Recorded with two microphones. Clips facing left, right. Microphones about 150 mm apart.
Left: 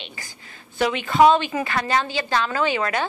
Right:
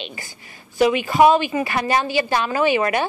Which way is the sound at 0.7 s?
10° right (ahead or behind).